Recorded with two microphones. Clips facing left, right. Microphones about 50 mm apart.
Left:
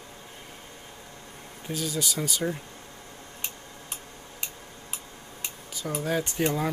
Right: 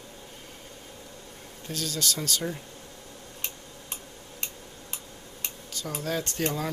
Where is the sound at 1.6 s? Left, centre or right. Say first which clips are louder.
Left 1 dB; centre.